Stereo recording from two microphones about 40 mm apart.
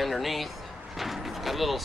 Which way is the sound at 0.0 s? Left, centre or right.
Centre.